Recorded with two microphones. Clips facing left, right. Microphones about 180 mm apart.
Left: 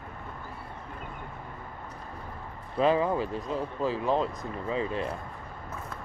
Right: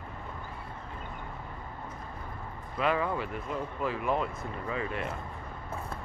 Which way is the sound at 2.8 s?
25° left (ahead or behind).